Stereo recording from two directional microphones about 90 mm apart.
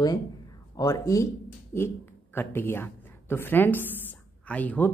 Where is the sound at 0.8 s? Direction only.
40° left (ahead or behind).